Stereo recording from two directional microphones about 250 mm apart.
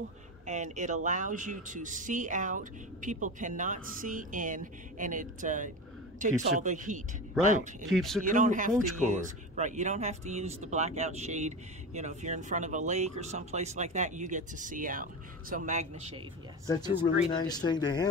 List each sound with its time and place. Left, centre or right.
0.5 s speech: right
7.9 s speech: centre
8.3 s speech: right
16.6 s speech: centre